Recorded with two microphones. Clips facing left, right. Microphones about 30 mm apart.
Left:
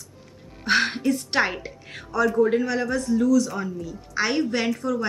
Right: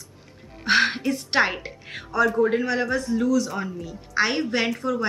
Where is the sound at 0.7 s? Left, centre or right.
Centre.